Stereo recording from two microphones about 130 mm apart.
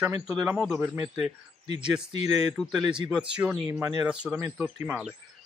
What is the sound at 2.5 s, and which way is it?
Speech, centre (ahead or behind).